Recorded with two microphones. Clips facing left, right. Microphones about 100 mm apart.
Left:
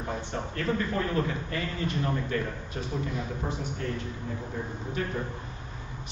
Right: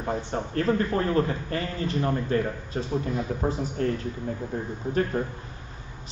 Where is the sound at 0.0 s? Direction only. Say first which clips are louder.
Right 4 dB; 35° right (ahead or behind).